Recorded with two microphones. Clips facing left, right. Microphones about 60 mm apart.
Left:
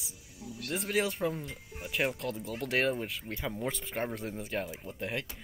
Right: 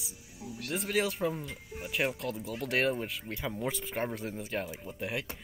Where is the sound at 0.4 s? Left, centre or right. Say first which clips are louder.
Right 1 dB; right.